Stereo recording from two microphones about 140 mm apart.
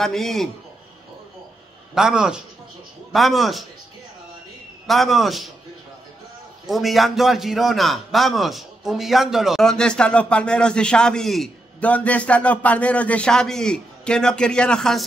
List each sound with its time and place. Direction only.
0.0 s a man's voice: centre (ahead or behind)
2.0 s a man's voice: 5° right (ahead or behind)
4.8 s a man's voice: centre (ahead or behind)
6.7 s a man's voice: centre (ahead or behind)